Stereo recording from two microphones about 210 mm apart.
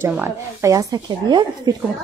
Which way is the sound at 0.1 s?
10° right (ahead or behind).